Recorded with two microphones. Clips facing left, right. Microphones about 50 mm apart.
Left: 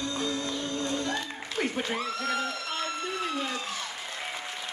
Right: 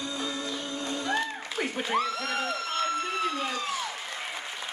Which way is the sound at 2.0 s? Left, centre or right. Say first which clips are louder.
Right 1 dB; right.